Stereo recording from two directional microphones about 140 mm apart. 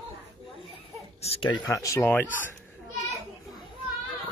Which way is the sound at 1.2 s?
40° left (ahead or behind).